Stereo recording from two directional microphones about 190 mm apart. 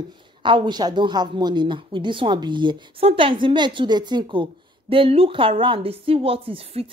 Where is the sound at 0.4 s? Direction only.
25° right (ahead or behind).